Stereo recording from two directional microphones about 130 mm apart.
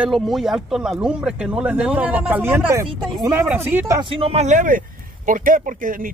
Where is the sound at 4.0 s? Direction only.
40° right (ahead or behind).